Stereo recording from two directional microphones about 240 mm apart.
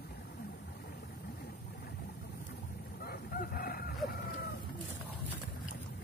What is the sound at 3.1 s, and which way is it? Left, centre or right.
Fowl, left.